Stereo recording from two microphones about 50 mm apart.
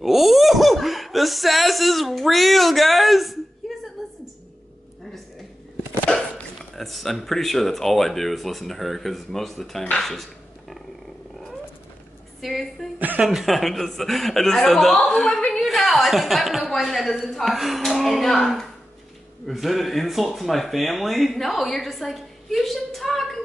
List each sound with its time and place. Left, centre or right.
0.0 s a sound: centre
6.1 s dog: centre
6.7 s speech: centre
12.4 s a woman's voice: centre
13.2 s speech: centre